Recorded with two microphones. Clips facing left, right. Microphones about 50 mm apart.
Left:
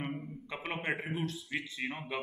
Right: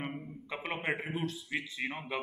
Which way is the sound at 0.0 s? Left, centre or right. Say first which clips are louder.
Left 1 dB; centre.